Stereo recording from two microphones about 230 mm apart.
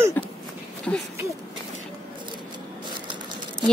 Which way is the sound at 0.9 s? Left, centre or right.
Centre.